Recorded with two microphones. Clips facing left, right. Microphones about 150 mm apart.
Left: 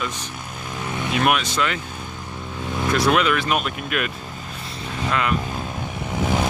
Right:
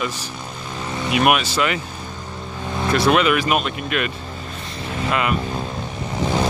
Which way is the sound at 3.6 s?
Centre (ahead or behind).